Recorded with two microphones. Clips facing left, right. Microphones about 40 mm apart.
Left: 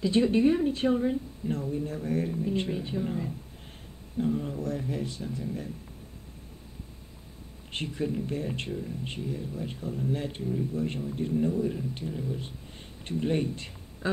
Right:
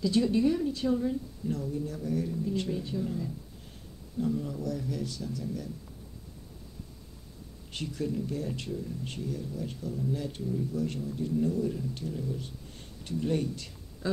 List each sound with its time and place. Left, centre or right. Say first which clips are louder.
0.0 s speech: left 3 dB; left
7.7 s speech: left 2 dB; left